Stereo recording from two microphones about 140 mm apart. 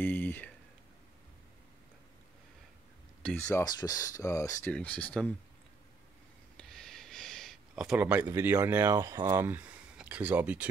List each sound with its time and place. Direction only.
0.0 s speech: 15° left (ahead or behind)
3.3 s speech: 20° left (ahead or behind)
4.7 s speech: 10° left (ahead or behind)
6.5 s a sound: 5° left (ahead or behind); by 8.3 s 10° right (ahead or behind)
8.3 s speech: 20° right (ahead or behind)